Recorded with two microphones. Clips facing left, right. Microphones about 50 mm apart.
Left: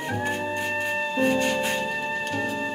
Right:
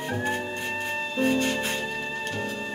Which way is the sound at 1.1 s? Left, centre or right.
Centre.